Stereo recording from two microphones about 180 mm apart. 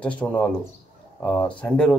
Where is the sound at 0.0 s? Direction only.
5° left (ahead or behind).